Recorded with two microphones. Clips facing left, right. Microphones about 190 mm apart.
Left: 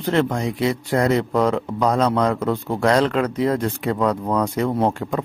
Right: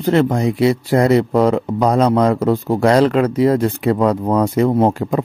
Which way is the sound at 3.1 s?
10° right (ahead or behind).